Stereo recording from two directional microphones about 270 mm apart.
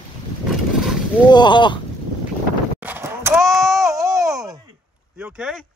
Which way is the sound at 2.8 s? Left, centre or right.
Centre.